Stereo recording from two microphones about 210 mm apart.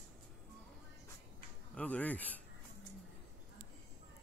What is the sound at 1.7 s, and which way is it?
Speech, 5° left (ahead or behind).